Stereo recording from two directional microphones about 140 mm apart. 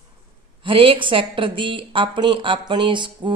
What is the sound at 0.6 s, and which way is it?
Speech, 40° right (ahead or behind).